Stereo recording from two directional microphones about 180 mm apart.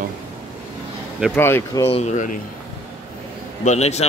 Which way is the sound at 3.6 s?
40° left (ahead or behind).